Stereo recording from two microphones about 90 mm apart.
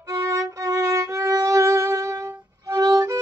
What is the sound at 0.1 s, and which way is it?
Violin, 35° right (ahead or behind).